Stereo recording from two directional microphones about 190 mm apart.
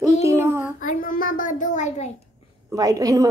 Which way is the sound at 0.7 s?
45° left (ahead or behind).